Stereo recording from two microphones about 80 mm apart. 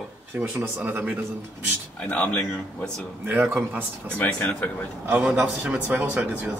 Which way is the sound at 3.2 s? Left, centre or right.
Right.